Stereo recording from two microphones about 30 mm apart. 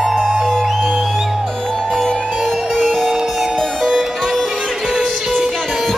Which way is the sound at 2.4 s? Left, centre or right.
Centre.